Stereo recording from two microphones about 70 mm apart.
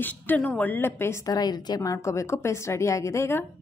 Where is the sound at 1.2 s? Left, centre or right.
Left.